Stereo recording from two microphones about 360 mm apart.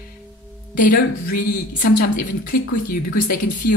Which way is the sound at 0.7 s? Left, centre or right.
Left.